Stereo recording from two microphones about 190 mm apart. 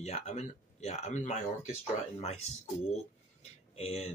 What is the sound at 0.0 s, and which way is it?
Speech, 35° left (ahead or behind).